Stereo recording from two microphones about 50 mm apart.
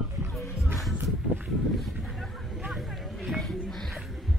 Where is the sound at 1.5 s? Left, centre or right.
Centre.